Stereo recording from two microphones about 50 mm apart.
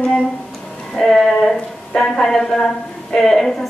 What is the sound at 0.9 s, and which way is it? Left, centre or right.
A woman's voice, centre.